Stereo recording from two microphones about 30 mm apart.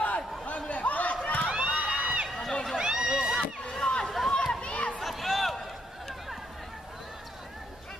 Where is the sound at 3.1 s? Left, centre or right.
Centre.